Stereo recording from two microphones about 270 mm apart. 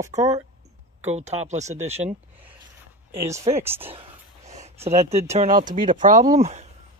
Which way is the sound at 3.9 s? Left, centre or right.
Right.